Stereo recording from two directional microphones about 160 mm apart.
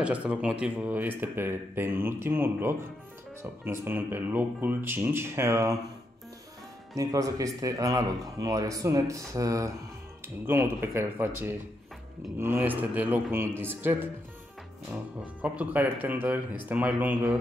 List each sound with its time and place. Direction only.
0.0 s speech: 10° right (ahead or behind)
7.0 s speech: 20° right (ahead or behind)
15.4 s speech: 10° right (ahead or behind)